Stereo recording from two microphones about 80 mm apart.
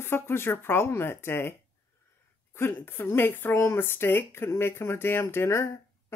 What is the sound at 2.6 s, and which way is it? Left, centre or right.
Speech, left.